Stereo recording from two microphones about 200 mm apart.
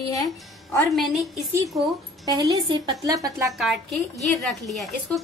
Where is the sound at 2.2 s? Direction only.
20° right (ahead or behind).